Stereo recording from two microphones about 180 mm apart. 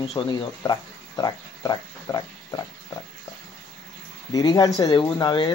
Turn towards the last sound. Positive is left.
turn(degrees=25)  # may be behind; listen again after turning